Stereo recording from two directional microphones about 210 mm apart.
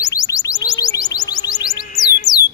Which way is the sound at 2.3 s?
20° left (ahead or behind).